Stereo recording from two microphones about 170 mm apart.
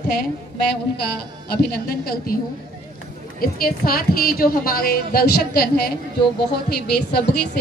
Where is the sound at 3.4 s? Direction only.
60° left (ahead or behind).